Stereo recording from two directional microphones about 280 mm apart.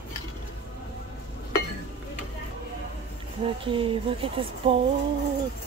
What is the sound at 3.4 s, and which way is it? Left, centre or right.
Speech, centre.